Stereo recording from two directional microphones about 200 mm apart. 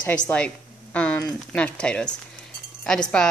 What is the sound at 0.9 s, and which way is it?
Speech, 5° left (ahead or behind).